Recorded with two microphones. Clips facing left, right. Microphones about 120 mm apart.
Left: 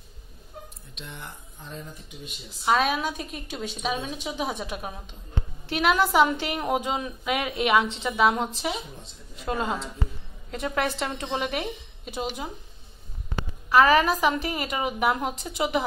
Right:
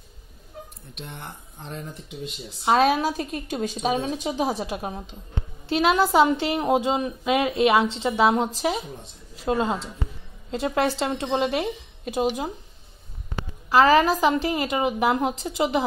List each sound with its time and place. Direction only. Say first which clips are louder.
0.9 s speech: right 3 dB; 50° right (ahead or behind)
1.6 s speech: right 4 dB; 80° right
2.6 s a woman's voice: right 4 dB; 35° right (ahead or behind)
9.4 s a woman's voice: right 4 dB; 30° right (ahead or behind)
12.0 s speech: right 8 dB; 45° right (ahead or behind)
13.7 s a woman's voice: right 2 dB; 30° right (ahead or behind)